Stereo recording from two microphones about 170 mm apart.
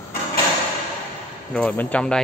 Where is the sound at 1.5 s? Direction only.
10° left (ahead or behind).